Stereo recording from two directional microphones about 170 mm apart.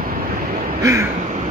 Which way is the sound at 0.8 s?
20° right (ahead or behind).